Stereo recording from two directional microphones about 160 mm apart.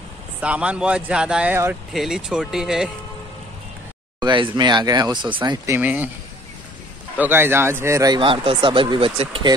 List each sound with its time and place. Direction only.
0.4 s speech: 5° right (ahead or behind)
4.2 s speech: 30° right (ahead or behind)
5.7 s speech: 10° right (ahead or behind)
7.2 s speech: 15° right (ahead or behind); by 9.5 s 35° right (ahead or behind)